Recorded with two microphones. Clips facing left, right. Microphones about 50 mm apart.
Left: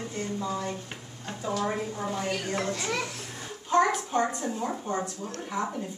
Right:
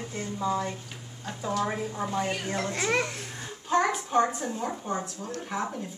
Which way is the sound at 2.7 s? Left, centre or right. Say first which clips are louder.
Right 4 dB; right.